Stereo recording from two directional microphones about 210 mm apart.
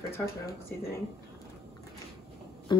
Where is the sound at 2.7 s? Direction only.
20° left (ahead or behind).